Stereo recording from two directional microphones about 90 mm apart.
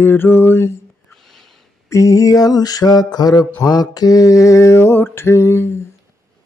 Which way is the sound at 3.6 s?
45° left (ahead or behind).